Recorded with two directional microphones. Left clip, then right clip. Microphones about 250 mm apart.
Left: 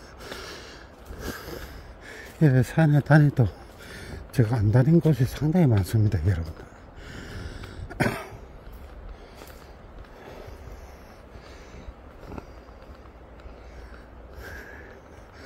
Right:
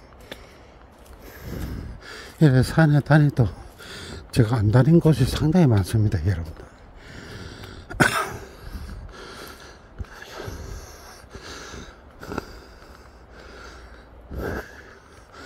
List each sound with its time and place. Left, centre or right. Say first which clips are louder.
2.0 s speech: right 3 dB; centre
7.1 s a sound: right 1 dB; centre
8.0 s cough: right 8 dB; right